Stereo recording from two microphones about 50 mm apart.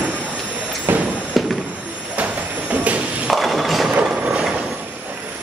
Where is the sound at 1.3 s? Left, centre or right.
Centre.